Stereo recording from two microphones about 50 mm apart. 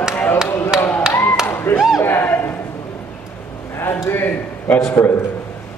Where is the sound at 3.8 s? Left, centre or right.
Left.